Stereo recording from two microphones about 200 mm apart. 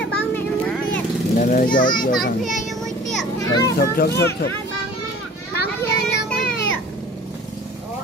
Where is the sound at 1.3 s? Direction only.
40° left (ahead or behind).